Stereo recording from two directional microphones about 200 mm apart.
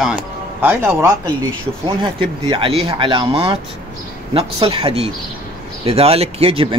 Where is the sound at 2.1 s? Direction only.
25° right (ahead or behind).